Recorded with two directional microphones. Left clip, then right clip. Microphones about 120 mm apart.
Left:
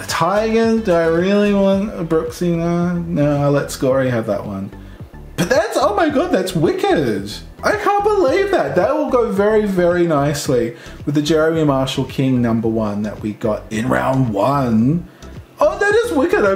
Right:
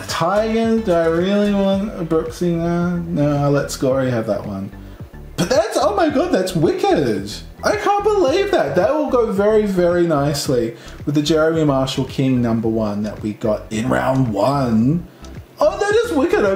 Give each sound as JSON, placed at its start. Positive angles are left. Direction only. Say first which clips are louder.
{"t": 0.3, "sound": "speech", "louder": "left 1 dB", "side_deg": 20}
{"t": 5.4, "sound": "music", "louder": "left 1 dB", "side_deg": 10}
{"t": 5.8, "sound": "speech", "louder": "left 1 dB", "side_deg": 5}